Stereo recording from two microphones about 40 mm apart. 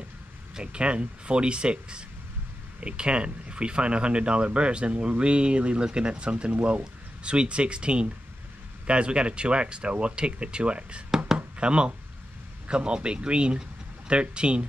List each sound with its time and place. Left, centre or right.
0.6 s speech: right
11.3 s a sound: right
12.6 s speech: right